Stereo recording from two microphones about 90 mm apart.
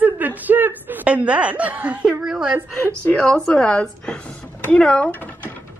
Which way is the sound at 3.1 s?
5° left (ahead or behind).